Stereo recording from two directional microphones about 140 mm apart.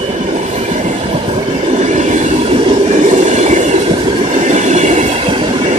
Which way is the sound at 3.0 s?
55° right (ahead or behind).